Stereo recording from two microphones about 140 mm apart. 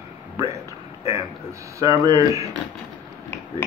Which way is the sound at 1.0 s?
25° right (ahead or behind).